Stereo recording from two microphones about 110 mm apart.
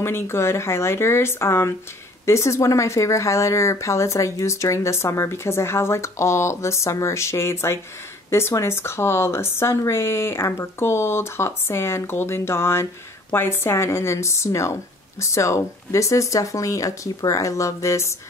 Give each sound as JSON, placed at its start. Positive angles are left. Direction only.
{"t": 0.0, "sound": "speech", "side_deg": 25}